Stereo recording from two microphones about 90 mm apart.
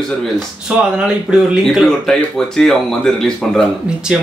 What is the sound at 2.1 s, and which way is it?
Speech, 5° left (ahead or behind).